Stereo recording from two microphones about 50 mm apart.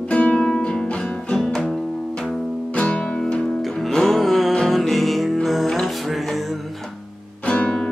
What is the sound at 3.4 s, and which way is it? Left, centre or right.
Music, centre.